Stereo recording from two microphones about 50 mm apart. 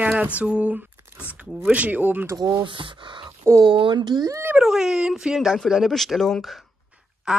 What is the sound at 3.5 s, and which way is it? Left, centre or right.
Speech, right.